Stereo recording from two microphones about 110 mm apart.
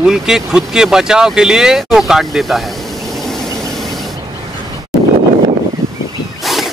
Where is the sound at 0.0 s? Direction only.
5° right (ahead or behind).